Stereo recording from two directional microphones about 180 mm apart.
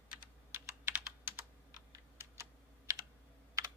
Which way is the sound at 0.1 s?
15° right (ahead or behind).